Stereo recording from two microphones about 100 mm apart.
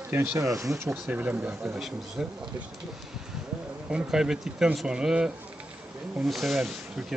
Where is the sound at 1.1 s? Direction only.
15° right (ahead or behind).